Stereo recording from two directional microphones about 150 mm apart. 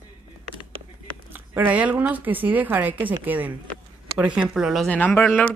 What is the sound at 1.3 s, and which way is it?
Speech, 10° right (ahead or behind).